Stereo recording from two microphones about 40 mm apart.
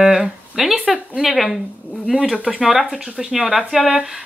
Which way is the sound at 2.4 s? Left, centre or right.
Centre.